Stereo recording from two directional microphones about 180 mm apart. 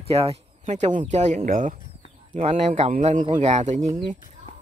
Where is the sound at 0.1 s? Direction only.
35° right (ahead or behind).